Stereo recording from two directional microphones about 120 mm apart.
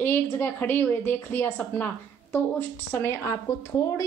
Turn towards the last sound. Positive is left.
turn(degrees=25)  # may be behind; listen again after turning